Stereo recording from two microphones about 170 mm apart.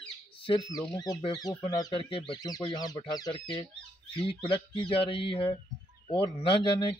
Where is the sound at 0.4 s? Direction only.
30° left (ahead or behind).